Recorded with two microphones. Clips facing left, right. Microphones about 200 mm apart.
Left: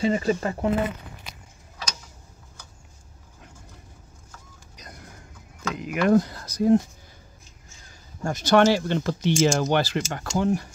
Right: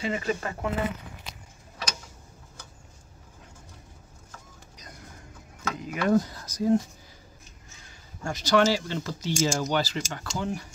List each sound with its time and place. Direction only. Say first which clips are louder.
0.0 s speech: left 6 dB; 35° left (ahead or behind)
5.8 s speech: left 4 dB; 70° left (ahead or behind)
8.2 s speech: left 4 dB; 50° left (ahead or behind)